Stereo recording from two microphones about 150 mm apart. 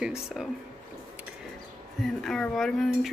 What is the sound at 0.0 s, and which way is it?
Speech, 5° right (ahead or behind).